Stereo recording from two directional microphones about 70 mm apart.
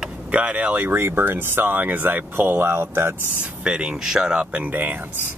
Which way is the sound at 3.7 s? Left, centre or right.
Centre.